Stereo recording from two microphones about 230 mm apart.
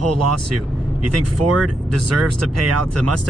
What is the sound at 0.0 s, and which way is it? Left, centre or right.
Speech, right.